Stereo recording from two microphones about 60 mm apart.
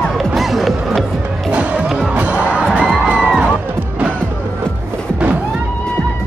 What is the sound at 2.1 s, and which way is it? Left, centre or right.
Music, right.